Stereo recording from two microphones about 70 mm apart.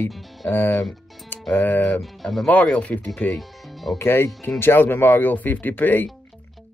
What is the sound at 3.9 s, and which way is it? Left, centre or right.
Speech, left.